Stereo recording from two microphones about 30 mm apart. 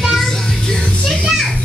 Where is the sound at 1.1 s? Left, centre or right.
Centre.